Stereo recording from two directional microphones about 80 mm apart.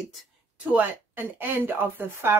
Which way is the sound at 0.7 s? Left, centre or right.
Right.